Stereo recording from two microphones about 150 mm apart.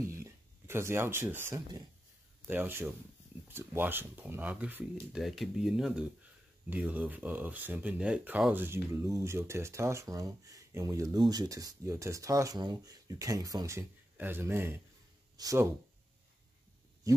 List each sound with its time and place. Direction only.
0.1 s speech: 20° right (ahead or behind)